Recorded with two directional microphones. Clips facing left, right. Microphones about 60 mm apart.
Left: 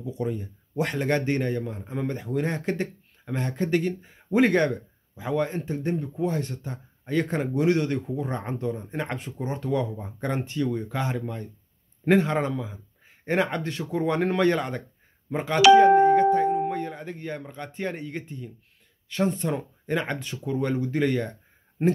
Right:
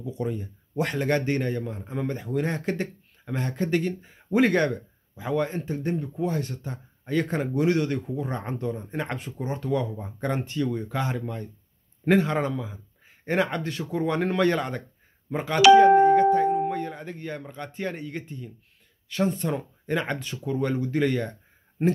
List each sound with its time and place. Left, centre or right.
0.7 s speech: centre
1.6 s speech: centre
4.3 s speech: left
5.1 s speech: centre
6.2 s speech: left
8.2 s speech: centre
9.2 s speech: left
12.1 s speech: left
14.5 s speech: centre
15.3 s doorbell: centre
16.9 s speech: centre
17.8 s speech: left